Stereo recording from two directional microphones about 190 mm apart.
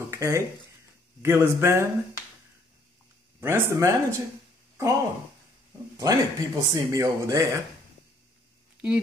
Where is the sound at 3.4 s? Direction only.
15° right (ahead or behind).